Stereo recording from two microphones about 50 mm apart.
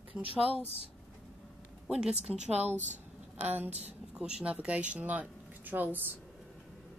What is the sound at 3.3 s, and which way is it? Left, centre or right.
Speech, right.